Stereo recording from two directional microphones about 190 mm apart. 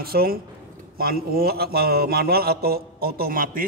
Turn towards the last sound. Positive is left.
turn(degrees=-50)  # may be behind; listen again after turning